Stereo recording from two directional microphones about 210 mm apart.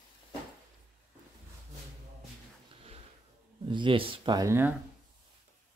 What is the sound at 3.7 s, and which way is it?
Speech, 25° right (ahead or behind).